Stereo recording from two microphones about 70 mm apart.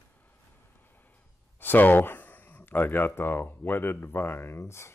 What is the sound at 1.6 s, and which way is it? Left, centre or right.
Speech, left.